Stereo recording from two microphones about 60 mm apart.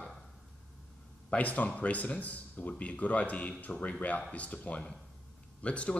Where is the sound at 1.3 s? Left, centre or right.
Left.